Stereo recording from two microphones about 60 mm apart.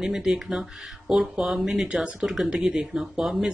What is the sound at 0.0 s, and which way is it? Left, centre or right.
Speech, centre.